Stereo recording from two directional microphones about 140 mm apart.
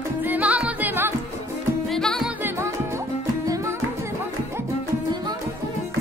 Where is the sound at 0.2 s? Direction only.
10° right (ahead or behind).